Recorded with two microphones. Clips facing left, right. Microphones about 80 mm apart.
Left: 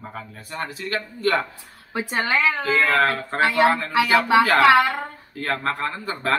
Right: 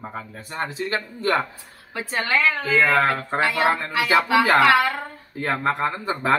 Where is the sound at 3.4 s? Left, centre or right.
Left.